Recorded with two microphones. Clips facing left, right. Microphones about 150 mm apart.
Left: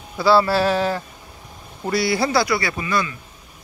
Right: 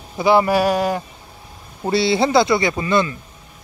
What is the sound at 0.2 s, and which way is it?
Speech, 20° right (ahead or behind).